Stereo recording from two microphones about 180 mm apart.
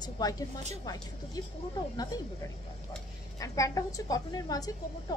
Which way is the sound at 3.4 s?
20° left (ahead or behind).